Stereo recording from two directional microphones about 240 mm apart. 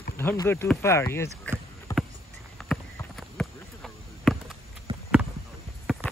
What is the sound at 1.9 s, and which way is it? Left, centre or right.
Rowboat, centre.